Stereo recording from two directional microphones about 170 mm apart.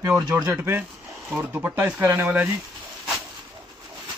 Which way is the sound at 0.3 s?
5° right (ahead or behind).